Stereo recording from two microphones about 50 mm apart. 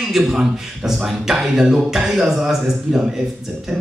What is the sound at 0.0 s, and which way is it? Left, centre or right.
Speech, centre.